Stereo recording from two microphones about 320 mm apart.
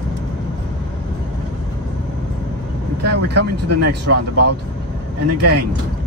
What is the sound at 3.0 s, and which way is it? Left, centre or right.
Speech, right.